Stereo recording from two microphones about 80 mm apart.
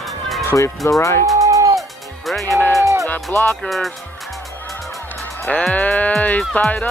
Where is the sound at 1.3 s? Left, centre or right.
Right.